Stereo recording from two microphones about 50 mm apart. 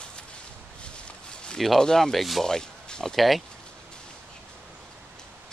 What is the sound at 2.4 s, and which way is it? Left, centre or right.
Speech, centre.